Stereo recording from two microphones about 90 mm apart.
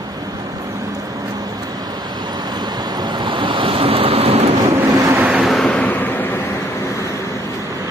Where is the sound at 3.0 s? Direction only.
55° right (ahead or behind); by 4.5 s 90° right.